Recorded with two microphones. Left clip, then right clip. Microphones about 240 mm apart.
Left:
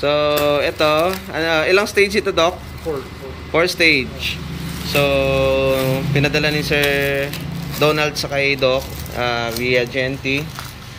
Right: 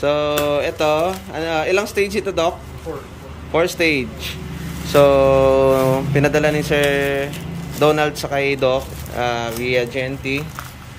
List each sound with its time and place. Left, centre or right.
0.0 s speech: centre
3.5 s speech: centre